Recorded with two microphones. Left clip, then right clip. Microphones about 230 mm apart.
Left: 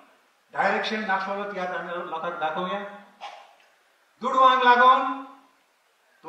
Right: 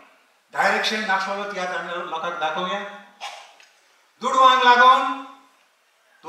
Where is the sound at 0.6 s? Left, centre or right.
Centre.